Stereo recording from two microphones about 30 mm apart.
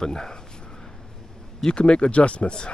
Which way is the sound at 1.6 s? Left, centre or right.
Left.